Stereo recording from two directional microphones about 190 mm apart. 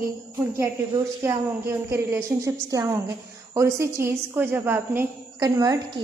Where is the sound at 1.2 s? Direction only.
15° right (ahead or behind).